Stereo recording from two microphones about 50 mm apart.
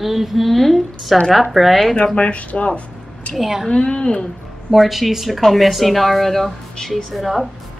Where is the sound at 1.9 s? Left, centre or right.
Left.